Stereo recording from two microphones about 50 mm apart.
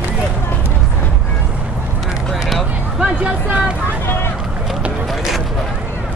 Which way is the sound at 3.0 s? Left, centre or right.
Right.